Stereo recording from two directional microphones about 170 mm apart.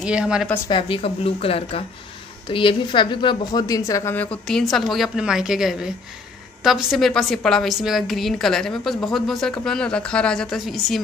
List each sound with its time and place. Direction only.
0.0 s a woman's voice: 5° right (ahead or behind)
0.7 s a woman's voice: 30° left (ahead or behind); by 11.0 s centre (ahead or behind)